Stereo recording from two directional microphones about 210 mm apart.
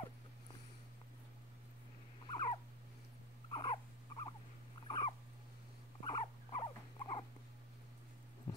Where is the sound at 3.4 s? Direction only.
25° left (ahead or behind).